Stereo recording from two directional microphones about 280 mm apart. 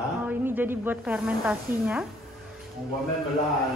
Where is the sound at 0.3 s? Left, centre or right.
Centre.